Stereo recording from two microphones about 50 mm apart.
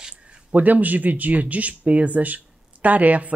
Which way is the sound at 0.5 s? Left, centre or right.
Right.